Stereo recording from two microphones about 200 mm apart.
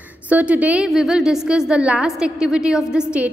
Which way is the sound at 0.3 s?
5° right (ahead or behind).